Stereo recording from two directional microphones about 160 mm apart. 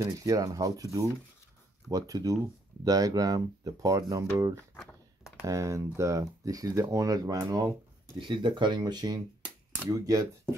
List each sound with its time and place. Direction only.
0.0 s speech: 20° right (ahead or behind)